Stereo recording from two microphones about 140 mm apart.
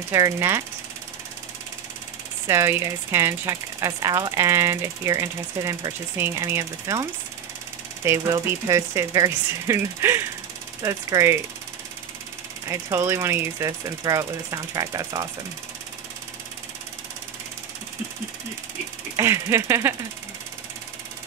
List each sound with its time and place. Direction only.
0.1 s ratchet: 20° right (ahead or behind)
2.4 s ratchet: 20° right (ahead or behind)
12.6 s ratchet: 20° right (ahead or behind)
19.1 s ratchet: 20° right (ahead or behind)